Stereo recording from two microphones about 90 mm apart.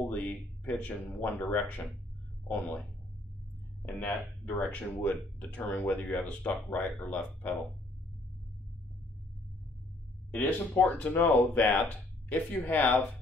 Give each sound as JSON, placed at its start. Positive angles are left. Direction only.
{"t": 0.0, "sound": "speech", "side_deg": 15}
{"t": 4.6, "sound": "speech", "side_deg": 15}
{"t": 10.3, "sound": "speech", "side_deg": 20}